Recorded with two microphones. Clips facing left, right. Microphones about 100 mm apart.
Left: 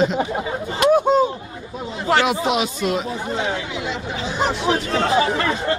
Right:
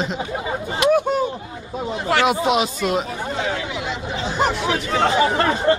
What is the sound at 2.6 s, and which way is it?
Speech, 40° right (ahead or behind).